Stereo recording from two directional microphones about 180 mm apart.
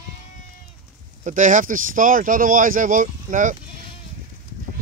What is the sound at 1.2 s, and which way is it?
Speech, 45° right (ahead or behind).